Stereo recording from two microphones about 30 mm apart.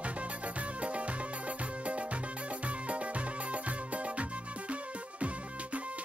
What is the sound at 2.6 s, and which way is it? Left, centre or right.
Music, right.